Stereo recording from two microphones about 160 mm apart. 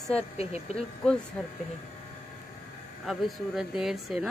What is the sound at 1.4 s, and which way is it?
Speech, 5° left (ahead or behind).